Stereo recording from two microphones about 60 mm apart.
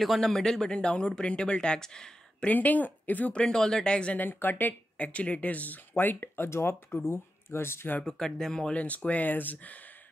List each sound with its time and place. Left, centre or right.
0.0 s speech: centre
2.5 s speech: left
3.3 s speech: centre
4.2 s speech: left
8.0 s speech: centre
8.7 s speech: left